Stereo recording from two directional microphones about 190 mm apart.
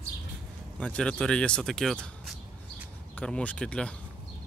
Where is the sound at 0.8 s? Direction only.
5° left (ahead or behind).